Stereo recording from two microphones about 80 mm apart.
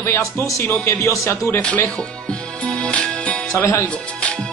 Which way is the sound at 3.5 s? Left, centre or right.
Left.